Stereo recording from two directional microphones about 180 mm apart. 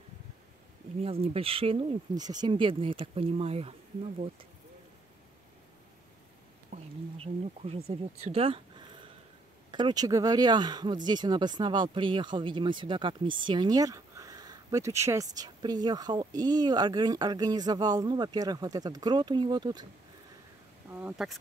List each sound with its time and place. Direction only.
1.0 s speech: 35° right (ahead or behind)
6.7 s speech: 30° right (ahead or behind)
20.9 s speech: 5° right (ahead or behind)